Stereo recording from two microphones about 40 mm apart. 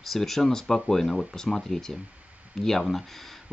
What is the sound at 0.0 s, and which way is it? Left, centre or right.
Speech, centre.